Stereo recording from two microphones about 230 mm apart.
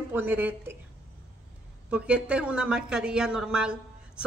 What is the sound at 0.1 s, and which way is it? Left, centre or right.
Speech, centre.